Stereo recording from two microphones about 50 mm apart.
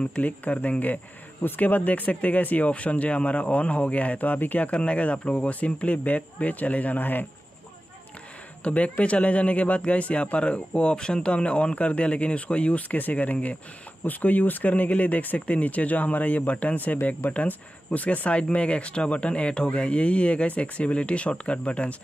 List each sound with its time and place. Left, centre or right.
0.0 s speech: left
8.6 s speech: left